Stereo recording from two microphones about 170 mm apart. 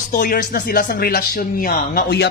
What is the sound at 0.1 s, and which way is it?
Speech, 55° left (ahead or behind).